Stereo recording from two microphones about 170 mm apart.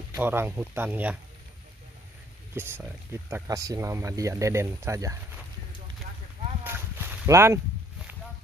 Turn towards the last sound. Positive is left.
turn(degrees=-15)  # may be behind; listen again after turning